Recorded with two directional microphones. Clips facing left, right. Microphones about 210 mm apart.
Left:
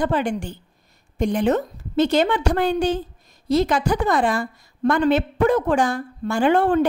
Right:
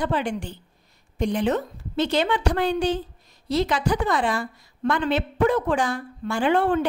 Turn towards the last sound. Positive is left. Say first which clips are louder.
# left 4 dB
turn(degrees=45)  # may be behind; listen again after turning